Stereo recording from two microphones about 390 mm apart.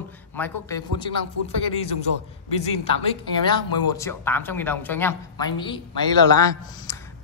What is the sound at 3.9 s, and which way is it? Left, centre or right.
A woman's voice, centre.